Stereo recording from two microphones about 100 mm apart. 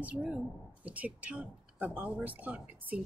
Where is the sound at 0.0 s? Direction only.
10° right (ahead or behind).